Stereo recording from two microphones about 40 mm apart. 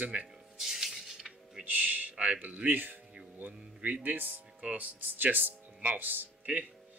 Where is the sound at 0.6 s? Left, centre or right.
Centre.